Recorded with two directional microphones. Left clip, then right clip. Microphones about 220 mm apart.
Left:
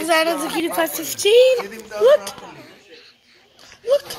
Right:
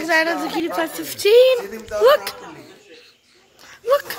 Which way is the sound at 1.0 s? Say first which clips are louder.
Left 1 dB; 40° right (ahead or behind).